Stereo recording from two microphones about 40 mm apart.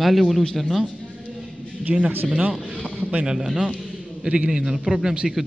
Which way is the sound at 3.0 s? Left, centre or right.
Right.